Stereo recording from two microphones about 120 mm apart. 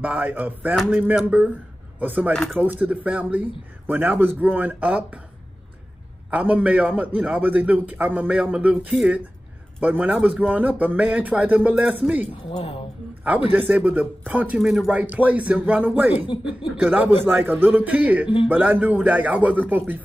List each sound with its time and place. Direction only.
0.0 s a man's voice: 15° right (ahead or behind)
6.3 s a man's voice: 10° right (ahead or behind)
12.4 s speech: 50° left (ahead or behind)
13.2 s a man's voice: 15° right (ahead or behind)